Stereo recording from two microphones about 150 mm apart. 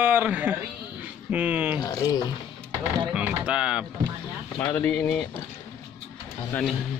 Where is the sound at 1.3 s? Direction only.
10° right (ahead or behind).